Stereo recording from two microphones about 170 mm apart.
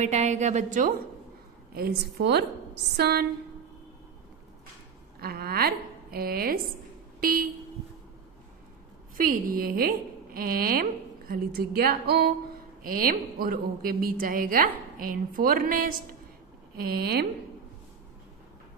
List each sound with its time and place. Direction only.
0.0 s a woman's voice: 45° right (ahead or behind)
1.7 s a woman's voice: 65° right (ahead or behind)
5.2 s a woman's voice: 65° right (ahead or behind)
7.2 s vehicle: 55° right (ahead or behind)
9.1 s a woman's voice: 55° right (ahead or behind)
12.8 s a woman's voice: 55° right (ahead or behind)